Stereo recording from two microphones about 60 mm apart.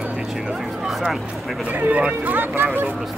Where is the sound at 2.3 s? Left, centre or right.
Right.